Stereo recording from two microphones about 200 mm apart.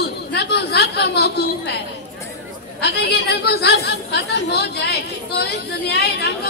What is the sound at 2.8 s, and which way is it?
A woman's voice, 55° left (ahead or behind).